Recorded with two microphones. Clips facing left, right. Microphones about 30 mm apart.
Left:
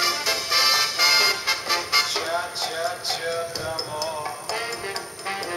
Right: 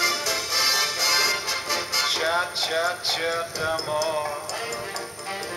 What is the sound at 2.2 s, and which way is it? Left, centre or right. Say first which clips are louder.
Music: right 3 dB; right.